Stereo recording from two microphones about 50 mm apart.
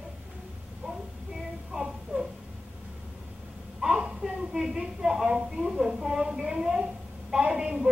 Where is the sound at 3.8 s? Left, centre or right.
Centre.